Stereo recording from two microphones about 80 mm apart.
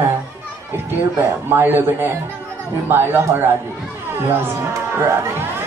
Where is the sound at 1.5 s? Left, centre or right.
Right.